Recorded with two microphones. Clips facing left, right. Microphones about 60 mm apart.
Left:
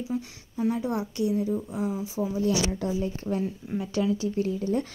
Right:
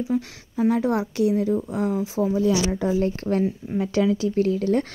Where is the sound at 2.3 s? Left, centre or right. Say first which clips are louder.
Right 3 dB; right.